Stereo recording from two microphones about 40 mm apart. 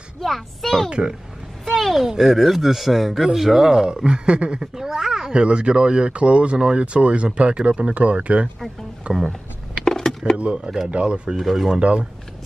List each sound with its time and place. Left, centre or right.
0.2 s speech: centre
0.8 s speech: right
1.7 s a sound: centre
2.1 s speech: centre; by 4.6 s right
4.7 s cat: centre
5.3 s speech: right
9.8 s a sound: centre
10.3 s speech: right
11.3 s speech: centre